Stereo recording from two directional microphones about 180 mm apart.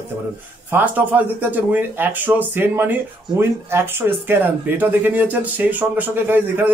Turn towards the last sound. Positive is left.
turn(degrees=-10)  # may be behind; listen again after turning